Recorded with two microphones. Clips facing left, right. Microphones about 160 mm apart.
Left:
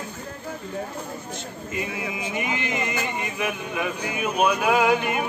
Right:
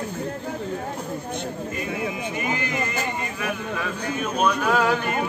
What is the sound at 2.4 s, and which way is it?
Speech, 20° left (ahead or behind).